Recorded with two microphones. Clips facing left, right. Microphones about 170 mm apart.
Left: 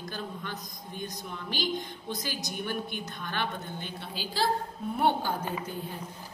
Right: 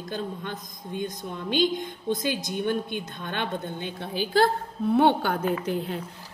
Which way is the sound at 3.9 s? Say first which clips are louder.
Right 10 dB; 55° right (ahead or behind).